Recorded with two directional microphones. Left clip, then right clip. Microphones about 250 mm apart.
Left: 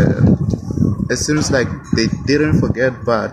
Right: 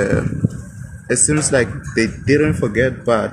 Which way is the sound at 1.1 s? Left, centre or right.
Centre.